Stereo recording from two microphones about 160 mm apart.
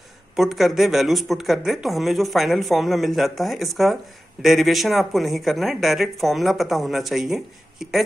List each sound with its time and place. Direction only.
0.4 s speech: centre (ahead or behind)